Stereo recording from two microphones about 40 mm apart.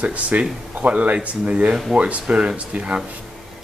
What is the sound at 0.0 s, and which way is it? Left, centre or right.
Speech, right.